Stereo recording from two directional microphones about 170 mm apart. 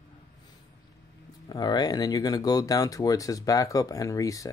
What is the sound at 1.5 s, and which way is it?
Speech, 25° left (ahead or behind).